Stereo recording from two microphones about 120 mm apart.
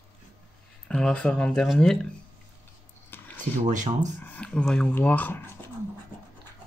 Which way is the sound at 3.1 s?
20° left (ahead or behind).